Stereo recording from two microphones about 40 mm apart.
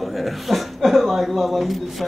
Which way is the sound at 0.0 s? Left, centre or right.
Centre.